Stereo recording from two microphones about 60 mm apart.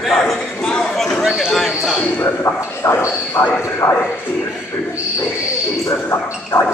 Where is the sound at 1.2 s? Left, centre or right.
Centre.